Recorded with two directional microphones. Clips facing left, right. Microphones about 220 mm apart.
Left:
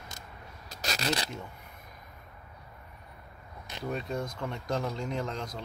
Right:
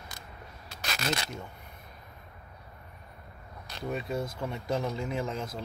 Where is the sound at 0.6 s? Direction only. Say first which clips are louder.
Left 1 dB; 40° left (ahead or behind).